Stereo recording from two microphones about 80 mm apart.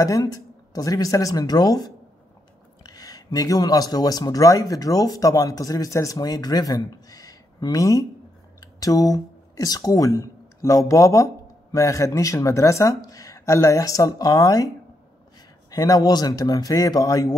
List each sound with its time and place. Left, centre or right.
0.3 s speech: left
15.7 s speech: left